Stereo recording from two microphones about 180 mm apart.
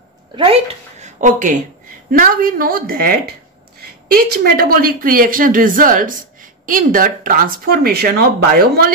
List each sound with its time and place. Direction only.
0.4 s a woman's voice: 35° right (ahead or behind); by 8.8 s 60° right (ahead or behind)